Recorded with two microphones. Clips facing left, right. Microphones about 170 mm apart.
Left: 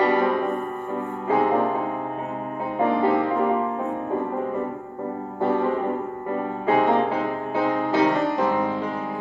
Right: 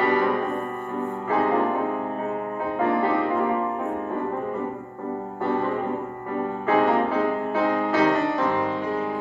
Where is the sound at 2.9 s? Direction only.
20° left (ahead or behind).